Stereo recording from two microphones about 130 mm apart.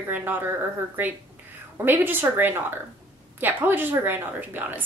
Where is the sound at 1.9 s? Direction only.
15° right (ahead or behind).